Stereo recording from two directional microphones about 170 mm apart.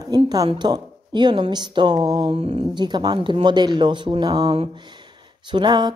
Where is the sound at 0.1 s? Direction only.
25° right (ahead or behind).